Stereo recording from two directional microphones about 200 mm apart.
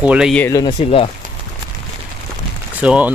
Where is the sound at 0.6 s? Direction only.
30° left (ahead or behind).